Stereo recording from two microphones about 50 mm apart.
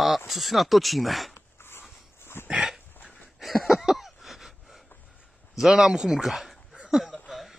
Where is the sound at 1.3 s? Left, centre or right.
Left.